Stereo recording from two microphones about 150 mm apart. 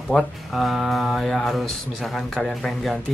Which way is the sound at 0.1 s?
Centre (ahead or behind).